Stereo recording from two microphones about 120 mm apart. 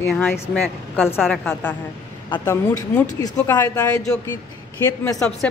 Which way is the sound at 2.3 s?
30° left (ahead or behind).